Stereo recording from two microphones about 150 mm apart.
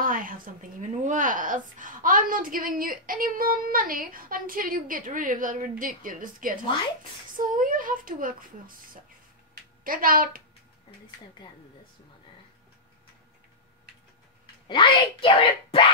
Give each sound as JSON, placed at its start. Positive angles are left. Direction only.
{"t": 0.0, "sound": "a woman's voice", "side_deg": -65}
{"t": 9.8, "sound": "a woman's voice", "side_deg": -70}
{"t": 14.4, "sound": "speech", "side_deg": 30}